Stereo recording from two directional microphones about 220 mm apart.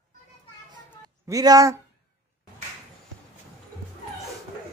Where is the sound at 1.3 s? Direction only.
15° right (ahead or behind).